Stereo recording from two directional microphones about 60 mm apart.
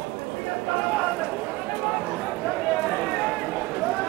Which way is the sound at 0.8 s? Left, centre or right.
Centre.